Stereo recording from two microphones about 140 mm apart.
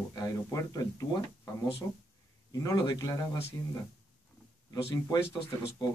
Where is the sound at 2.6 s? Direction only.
30° left (ahead or behind).